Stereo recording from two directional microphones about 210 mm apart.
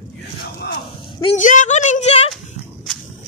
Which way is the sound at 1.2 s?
35° left (ahead or behind).